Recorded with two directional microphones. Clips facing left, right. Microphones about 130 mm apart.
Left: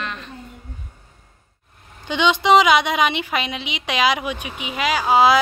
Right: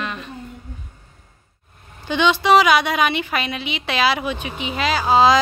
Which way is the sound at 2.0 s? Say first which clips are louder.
Even; 15° left (ahead or behind).